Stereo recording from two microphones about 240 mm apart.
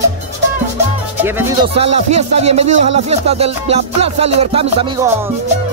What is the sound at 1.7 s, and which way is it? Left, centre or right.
Speech, right.